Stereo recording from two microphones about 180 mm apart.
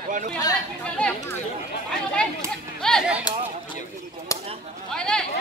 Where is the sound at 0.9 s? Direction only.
5° left (ahead or behind).